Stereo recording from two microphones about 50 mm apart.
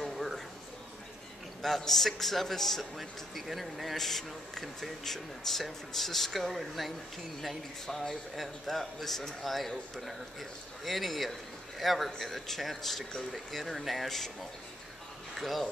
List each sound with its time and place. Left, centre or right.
0.0 s a sound: centre
1.6 s a man's voice: centre
15.3 s speech: centre